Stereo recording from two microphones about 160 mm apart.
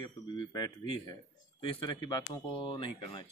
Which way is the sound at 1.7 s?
30° left (ahead or behind).